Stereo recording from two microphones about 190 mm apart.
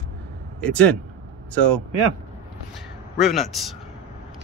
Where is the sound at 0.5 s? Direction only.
5° left (ahead or behind).